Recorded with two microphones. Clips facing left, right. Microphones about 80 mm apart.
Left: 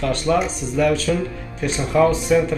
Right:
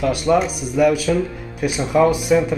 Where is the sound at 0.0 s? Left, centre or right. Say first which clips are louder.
Right 2 dB; centre.